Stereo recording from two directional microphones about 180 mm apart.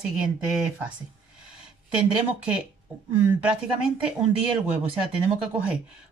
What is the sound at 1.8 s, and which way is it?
Speech, 5° right (ahead or behind).